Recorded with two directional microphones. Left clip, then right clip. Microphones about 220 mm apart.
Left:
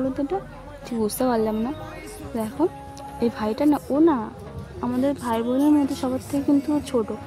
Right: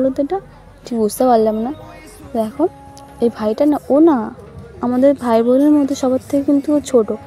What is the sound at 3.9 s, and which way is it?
Speech, 20° right (ahead or behind).